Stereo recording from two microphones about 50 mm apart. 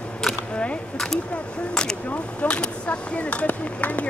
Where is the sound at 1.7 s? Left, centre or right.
Centre.